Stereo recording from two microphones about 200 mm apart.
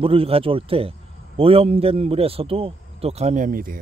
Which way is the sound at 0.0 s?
30° right (ahead or behind).